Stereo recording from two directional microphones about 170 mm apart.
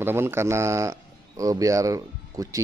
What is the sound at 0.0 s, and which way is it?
Speech, 15° right (ahead or behind).